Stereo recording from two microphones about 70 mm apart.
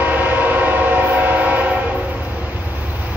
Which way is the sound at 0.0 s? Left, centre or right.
Right.